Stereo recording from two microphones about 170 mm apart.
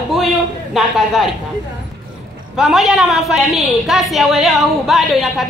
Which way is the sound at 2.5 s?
Centre (ahead or behind).